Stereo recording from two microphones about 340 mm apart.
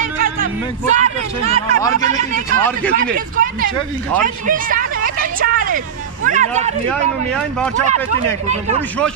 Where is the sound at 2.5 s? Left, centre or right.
Centre.